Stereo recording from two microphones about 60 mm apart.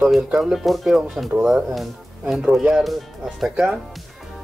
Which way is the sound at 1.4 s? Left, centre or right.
Centre.